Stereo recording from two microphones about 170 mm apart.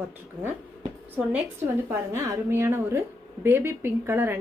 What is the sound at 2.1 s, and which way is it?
A woman's voice, 15° right (ahead or behind).